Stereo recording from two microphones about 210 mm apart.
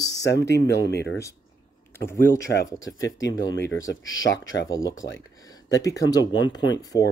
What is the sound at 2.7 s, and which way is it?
Speech, 65° left (ahead or behind).